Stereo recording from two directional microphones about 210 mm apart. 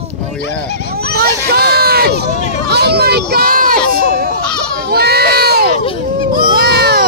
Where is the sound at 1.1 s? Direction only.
50° right (ahead or behind).